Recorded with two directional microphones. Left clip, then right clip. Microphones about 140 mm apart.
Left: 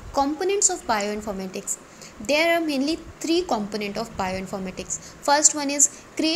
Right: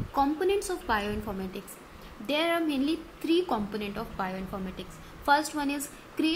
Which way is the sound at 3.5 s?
15° left (ahead or behind).